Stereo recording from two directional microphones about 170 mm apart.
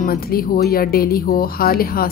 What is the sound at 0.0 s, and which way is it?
A woman's voice, 60° left (ahead or behind).